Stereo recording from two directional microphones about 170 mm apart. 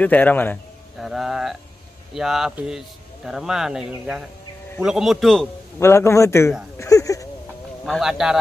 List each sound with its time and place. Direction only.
0.0 s a man's voice: 10° left (ahead or behind)
0.9 s speech: centre (ahead or behind)
5.8 s a man's voice: 15° left (ahead or behind)
6.8 s a sound: 20° left (ahead or behind)
7.8 s speech: centre (ahead or behind)